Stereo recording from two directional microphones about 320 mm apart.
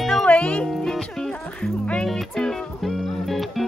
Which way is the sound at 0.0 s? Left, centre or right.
Centre.